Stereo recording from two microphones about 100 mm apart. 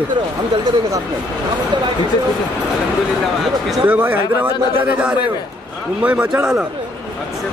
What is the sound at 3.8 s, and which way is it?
A man's voice, 15° right (ahead or behind).